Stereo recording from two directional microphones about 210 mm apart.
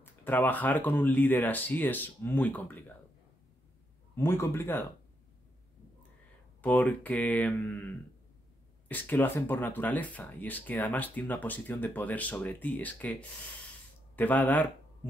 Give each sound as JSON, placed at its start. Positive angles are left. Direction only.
{"t": 0.0, "sound": "speech", "side_deg": 10}
{"t": 4.1, "sound": "speech", "side_deg": 10}
{"t": 6.6, "sound": "speech", "side_deg": 5}
{"t": 8.8, "sound": "speech", "side_deg": 10}
{"t": 14.1, "sound": "speech", "side_deg": 10}